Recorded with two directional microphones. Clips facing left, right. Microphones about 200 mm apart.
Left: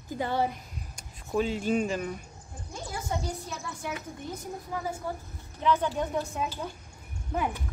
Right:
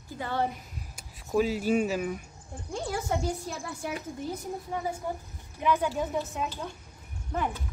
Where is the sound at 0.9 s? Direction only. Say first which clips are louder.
Right 2 dB; 5° right (ahead or behind).